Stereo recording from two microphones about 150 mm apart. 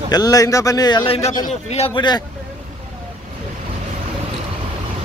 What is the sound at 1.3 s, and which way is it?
Speech, 60° left (ahead or behind).